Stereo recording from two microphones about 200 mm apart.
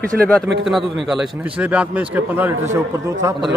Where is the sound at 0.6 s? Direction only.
Centre (ahead or behind).